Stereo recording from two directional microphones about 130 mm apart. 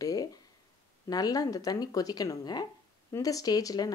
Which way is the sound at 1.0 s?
30° left (ahead or behind).